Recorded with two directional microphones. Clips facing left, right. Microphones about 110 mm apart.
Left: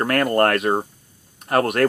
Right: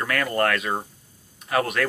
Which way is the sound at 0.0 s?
50° left (ahead or behind).